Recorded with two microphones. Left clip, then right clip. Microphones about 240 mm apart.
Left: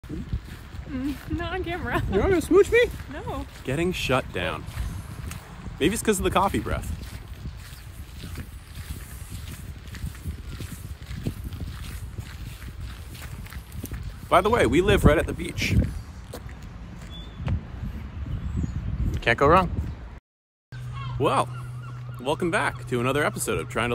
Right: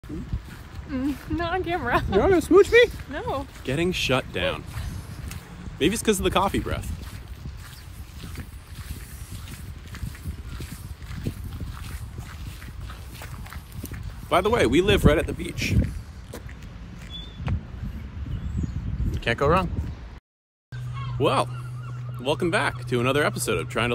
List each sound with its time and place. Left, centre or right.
0.9 s speech: centre
3.1 s speech: centre
3.6 s speech: centre
5.8 s speech: centre
13.8 s speech: centre
19.1 s speech: left
20.9 s a sound: centre
22.2 s speech: centre